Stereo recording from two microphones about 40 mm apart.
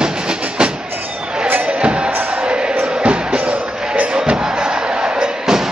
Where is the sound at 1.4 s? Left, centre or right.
Right.